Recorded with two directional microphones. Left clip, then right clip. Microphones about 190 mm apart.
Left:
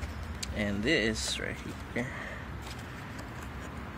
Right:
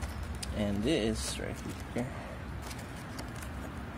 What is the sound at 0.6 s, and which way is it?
Speech, 15° right (ahead or behind).